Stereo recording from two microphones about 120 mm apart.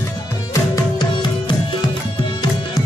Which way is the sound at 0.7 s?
40° left (ahead or behind).